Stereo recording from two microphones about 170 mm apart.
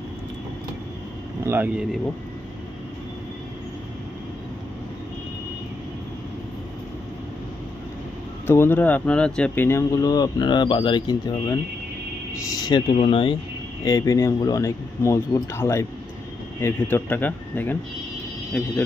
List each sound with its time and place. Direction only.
1.4 s speech: 10° right (ahead or behind)
8.5 s speech: 15° left (ahead or behind)
12.6 s speech: 30° left (ahead or behind)
13.8 s speech: 20° left (ahead or behind)